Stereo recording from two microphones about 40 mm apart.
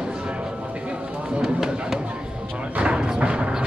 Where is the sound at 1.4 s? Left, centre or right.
Centre.